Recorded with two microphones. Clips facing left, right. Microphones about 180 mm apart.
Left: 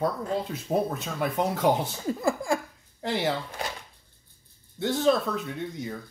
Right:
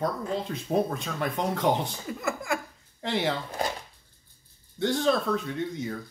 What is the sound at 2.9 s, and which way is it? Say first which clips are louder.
Speech: even; centre (ahead or behind).